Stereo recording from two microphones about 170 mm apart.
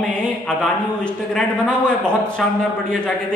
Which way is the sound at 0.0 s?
5° left (ahead or behind).